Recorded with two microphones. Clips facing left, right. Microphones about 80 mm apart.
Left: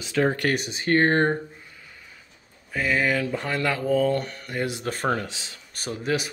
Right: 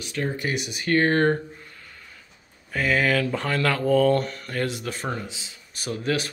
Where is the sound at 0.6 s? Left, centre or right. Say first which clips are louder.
Left 1 dB; left.